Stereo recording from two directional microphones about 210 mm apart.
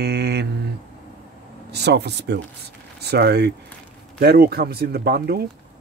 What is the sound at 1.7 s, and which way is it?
Speech, 55° right (ahead or behind).